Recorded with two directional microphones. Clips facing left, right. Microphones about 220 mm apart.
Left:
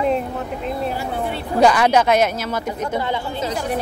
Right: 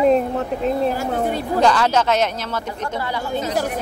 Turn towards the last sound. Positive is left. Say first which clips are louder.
# left 3 dB
turn(degrees=20)  # may be behind; listen again after turning